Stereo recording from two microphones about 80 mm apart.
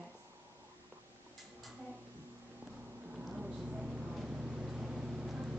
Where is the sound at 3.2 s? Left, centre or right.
Centre.